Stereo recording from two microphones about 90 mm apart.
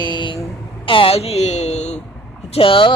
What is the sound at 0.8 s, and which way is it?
Speech, 80° left.